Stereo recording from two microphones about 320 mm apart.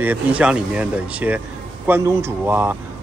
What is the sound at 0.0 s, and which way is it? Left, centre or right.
Speech, centre.